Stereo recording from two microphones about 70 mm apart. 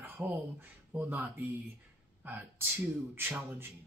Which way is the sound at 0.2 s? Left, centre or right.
Right.